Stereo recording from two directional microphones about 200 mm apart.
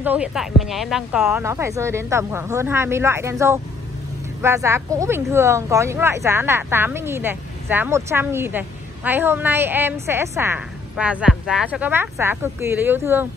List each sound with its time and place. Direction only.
0.0 s speech: 5° right (ahead or behind)